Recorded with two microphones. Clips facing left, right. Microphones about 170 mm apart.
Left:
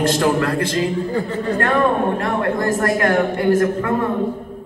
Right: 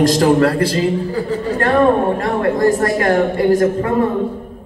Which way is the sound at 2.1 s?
35° right (ahead or behind).